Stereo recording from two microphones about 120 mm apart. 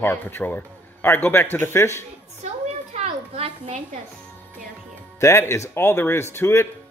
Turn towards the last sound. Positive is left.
turn(degrees=20)  # may be behind; listen again after turning